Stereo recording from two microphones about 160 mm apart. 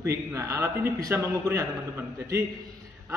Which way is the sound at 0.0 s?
20° right (ahead or behind).